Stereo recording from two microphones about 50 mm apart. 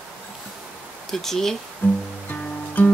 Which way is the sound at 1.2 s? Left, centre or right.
Centre.